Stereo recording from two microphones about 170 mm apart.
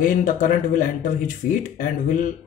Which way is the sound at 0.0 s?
50° left (ahead or behind).